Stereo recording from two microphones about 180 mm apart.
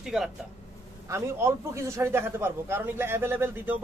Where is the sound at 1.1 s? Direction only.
15° right (ahead or behind).